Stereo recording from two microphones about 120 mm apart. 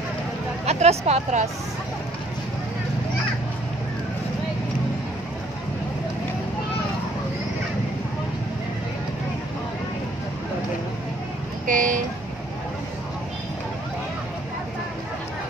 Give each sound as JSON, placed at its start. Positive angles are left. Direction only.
{"t": 0.7, "sound": "a woman's voice", "side_deg": -60}
{"t": 11.6, "sound": "vehicle", "side_deg": -90}